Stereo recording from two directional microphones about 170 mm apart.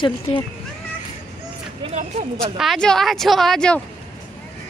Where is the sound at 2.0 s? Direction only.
40° right (ahead or behind).